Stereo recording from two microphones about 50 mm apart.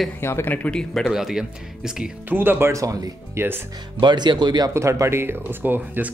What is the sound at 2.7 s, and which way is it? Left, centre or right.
Speech, right.